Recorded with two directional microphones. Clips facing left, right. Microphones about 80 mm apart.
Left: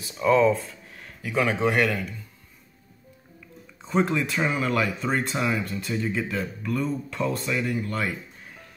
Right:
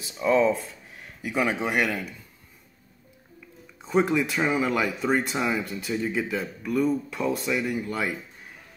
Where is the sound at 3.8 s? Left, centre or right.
Centre.